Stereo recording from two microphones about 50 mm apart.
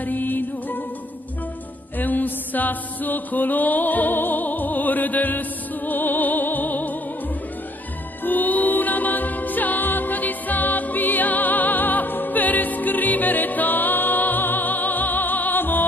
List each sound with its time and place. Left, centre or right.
0.0 s music: left
2.0 s mantra: left
8.2 s music: left